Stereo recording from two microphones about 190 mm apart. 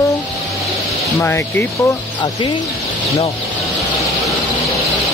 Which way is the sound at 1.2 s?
15° left (ahead or behind).